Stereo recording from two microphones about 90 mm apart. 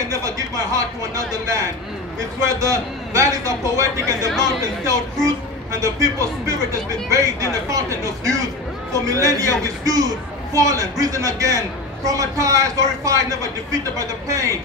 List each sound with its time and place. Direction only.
0.1 s a man's voice: 35° right (ahead or behind)